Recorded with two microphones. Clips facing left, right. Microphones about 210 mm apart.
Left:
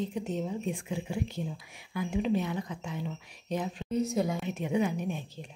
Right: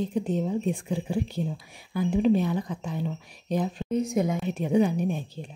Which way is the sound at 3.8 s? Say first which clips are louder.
Right 2 dB; 20° right (ahead or behind).